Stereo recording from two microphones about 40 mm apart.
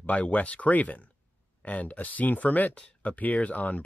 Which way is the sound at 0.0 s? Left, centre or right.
Left.